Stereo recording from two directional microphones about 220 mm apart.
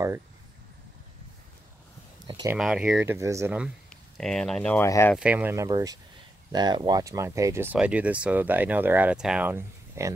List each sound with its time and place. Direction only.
2.2 s a sound: 20° right (ahead or behind)
2.5 s speech: 5° right (ahead or behind)
5.1 s speech: 5° right (ahead or behind)